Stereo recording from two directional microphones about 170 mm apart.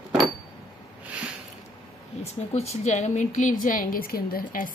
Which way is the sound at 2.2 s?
40° left (ahead or behind).